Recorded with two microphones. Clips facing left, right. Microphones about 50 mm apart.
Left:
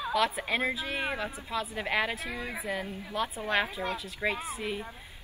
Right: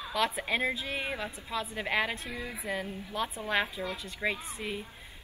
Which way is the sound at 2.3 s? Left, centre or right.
Left.